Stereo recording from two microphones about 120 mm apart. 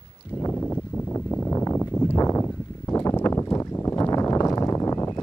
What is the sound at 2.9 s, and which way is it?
Boat, 25° left (ahead or behind).